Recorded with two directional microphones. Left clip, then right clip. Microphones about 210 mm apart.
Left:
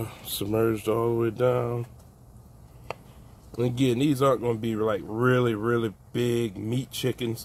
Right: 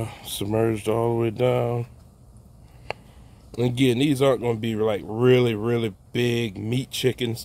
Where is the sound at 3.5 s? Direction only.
45° right (ahead or behind).